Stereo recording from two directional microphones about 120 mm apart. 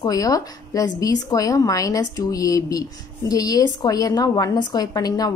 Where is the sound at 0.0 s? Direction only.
30° left (ahead or behind).